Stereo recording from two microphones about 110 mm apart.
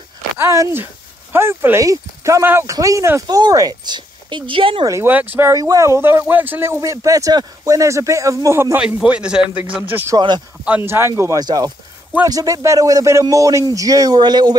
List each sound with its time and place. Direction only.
0.4 s speech: 25° right (ahead or behind); by 4.8 s 55° right (ahead or behind)
4.8 s a man's voice: 25° right (ahead or behind)
5.5 s speech: 30° right (ahead or behind)
8.7 s a man's voice: 10° right (ahead or behind)
10.1 s speech: 40° right (ahead or behind)
10.9 s speech: 25° right (ahead or behind)
11.4 s speech: 35° right (ahead or behind)